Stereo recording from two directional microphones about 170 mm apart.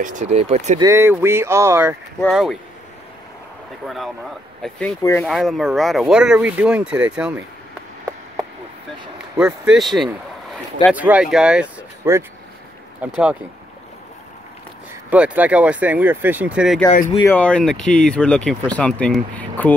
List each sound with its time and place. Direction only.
0.0 s speech: 45° right (ahead or behind)
0.7 s speech: 15° right (ahead or behind)
2.2 s speech: centre (ahead or behind)
3.8 s speech: centre (ahead or behind)
9.4 s speech: centre (ahead or behind)
12.0 s speech: 15° right (ahead or behind)
15.0 s speech: 10° right (ahead or behind)
17.2 s speech: 10° left (ahead or behind)